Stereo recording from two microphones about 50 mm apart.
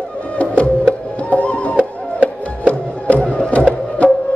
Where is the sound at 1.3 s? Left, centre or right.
Left.